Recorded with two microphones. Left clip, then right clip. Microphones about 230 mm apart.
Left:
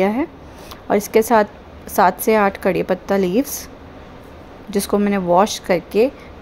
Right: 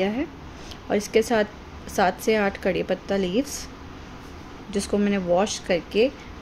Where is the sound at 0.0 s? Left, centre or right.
Centre.